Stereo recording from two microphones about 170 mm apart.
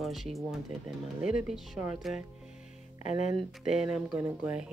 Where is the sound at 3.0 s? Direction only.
45° left (ahead or behind).